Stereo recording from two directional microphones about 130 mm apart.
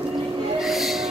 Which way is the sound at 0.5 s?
Centre (ahead or behind).